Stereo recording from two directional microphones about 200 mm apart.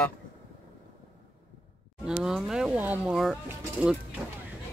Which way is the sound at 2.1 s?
5° right (ahead or behind).